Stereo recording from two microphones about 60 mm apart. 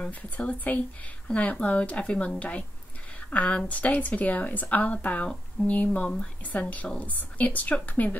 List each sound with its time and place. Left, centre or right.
0.1 s speech: left